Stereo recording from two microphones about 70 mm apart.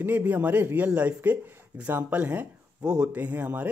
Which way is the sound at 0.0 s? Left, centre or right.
Right.